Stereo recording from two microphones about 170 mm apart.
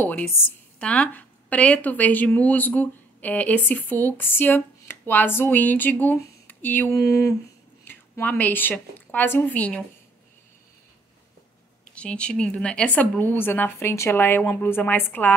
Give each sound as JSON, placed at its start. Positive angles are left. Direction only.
{"t": 0.7, "sound": "a woman's voice", "side_deg": 5}
{"t": 11.9, "sound": "speech", "side_deg": 5}